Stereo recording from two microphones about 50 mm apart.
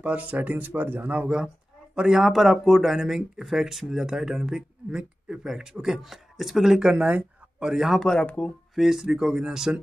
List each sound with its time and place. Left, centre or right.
0.0 s speech: right
1.1 s speech: centre
8.0 s speech: centre
8.7 s speech: centre